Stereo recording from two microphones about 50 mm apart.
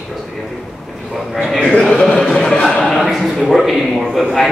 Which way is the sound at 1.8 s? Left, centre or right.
Centre.